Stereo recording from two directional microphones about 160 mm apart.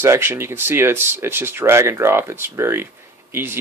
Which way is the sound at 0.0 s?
15° right (ahead or behind).